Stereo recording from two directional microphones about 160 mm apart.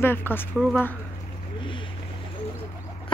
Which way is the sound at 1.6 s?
30° left (ahead or behind).